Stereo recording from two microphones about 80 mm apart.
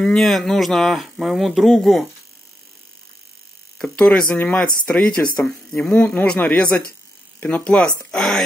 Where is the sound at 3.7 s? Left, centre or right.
Centre.